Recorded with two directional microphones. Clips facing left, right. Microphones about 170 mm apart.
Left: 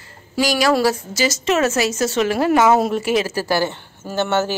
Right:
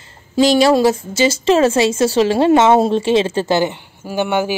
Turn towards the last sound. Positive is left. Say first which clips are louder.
# right 2 dB
turn(degrees=-10)  # may be behind; listen again after turning